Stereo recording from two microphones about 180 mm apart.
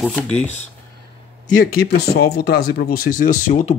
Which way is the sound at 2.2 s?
60° left (ahead or behind).